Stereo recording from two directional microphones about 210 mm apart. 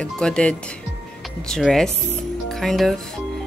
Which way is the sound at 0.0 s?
5° left (ahead or behind).